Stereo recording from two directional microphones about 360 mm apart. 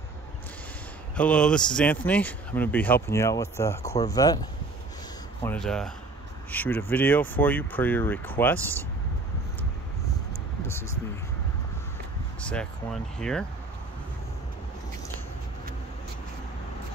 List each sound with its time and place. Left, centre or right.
1.1 s speech: centre
5.4 s speech: centre
12.4 s speech: centre